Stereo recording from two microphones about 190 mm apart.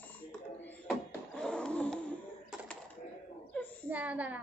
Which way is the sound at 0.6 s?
10° left (ahead or behind).